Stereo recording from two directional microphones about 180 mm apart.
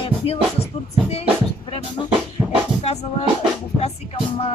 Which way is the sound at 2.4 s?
5° right (ahead or behind).